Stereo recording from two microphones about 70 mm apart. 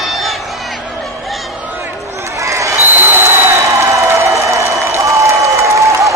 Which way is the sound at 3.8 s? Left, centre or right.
Right.